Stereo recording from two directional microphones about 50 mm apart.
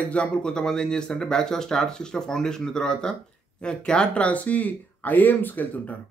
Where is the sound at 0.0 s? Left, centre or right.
Left.